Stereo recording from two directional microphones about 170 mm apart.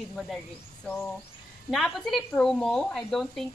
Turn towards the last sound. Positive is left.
turn(degrees=0)  # may be behind; listen again after turning